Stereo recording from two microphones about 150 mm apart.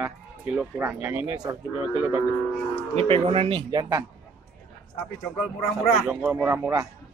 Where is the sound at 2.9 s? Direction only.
40° right (ahead or behind).